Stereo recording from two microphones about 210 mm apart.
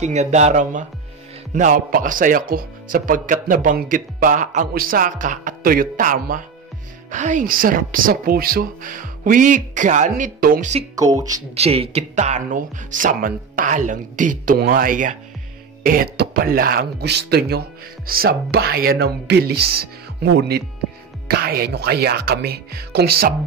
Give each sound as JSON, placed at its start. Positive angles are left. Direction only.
{"t": 0.0, "sound": "speech", "side_deg": -35}